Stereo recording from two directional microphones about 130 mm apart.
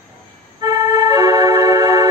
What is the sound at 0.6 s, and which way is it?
Organ, 30° right (ahead or behind).